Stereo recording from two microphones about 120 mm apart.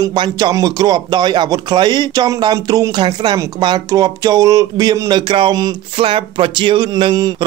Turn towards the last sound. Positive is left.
turn(degrees=-40)  # may be behind; listen again after turning